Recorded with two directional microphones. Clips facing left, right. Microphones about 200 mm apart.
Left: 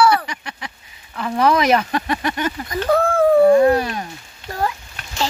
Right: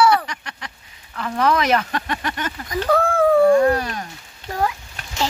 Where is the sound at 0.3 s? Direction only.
10° left (ahead or behind).